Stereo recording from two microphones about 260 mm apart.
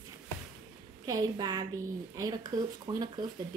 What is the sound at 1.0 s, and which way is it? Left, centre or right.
A woman's voice, centre.